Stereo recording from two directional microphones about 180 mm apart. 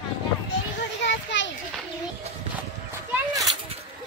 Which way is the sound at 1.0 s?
80° left.